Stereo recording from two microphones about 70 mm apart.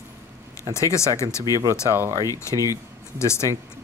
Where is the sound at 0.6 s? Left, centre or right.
Left.